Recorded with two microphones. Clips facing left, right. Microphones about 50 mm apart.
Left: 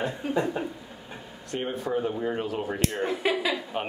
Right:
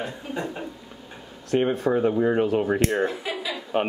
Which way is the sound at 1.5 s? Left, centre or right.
Right.